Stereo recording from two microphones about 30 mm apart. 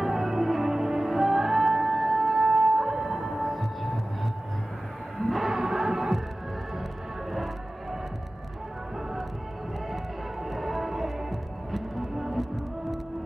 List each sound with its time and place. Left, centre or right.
0.0 s music: centre
5.5 s music: centre
10.5 s music: centre